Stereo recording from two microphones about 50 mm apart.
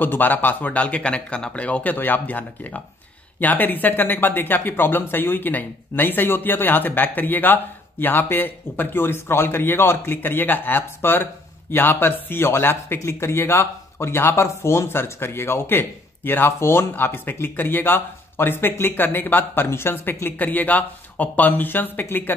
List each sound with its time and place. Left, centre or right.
0.0 s speech: left
2.0 s speech: left
16.5 s speech: left
16.9 s speech: left
20.2 s speech: left